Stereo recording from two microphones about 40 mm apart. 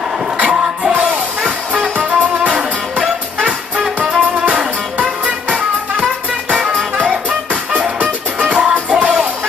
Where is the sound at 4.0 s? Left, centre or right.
Right.